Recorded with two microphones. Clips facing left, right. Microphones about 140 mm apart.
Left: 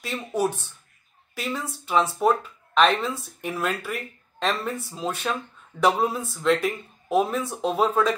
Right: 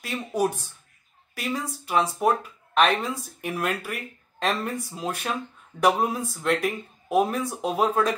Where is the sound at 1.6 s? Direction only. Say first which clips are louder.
Left 2 dB; 10° right (ahead or behind).